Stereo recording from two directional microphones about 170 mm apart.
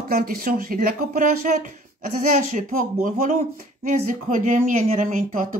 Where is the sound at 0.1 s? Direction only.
60° right (ahead or behind).